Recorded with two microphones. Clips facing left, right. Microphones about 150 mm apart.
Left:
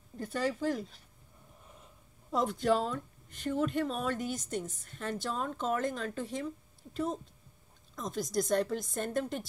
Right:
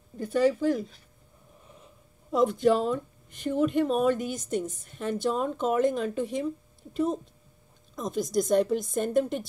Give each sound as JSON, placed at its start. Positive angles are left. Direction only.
{"t": 0.2, "sound": "a woman's voice", "side_deg": -15}
{"t": 2.3, "sound": "a woman's voice", "side_deg": -15}